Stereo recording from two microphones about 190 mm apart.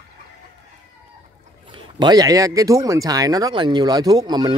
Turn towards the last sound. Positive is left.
turn(degrees=-20)  # may be behind; listen again after turning